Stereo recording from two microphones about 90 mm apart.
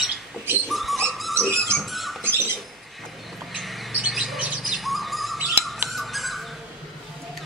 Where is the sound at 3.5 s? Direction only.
Centre (ahead or behind).